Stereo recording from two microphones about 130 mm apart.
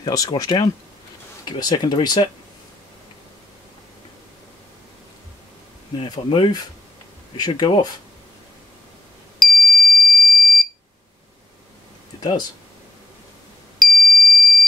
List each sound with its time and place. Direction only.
0.0 s speech: 30° left (ahead or behind)
6.0 s speech: 35° left (ahead or behind)
9.4 s fire alarm: centre (ahead or behind)
12.2 s speech: 30° left (ahead or behind)
13.7 s alarm: 5° left (ahead or behind)